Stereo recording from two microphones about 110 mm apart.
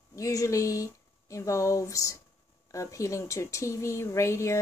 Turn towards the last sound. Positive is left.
turn(degrees=25)  # may be behind; listen again after turning